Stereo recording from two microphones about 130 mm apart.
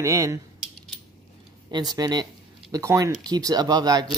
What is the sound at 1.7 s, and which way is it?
Speech, 30° right (ahead or behind).